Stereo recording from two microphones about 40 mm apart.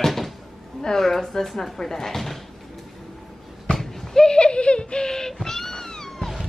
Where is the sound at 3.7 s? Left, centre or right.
Centre.